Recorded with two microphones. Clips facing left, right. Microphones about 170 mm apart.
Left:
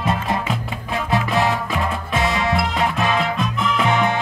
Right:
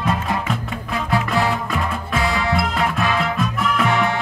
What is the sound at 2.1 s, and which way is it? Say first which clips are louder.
Music: even; 20° left (ahead or behind).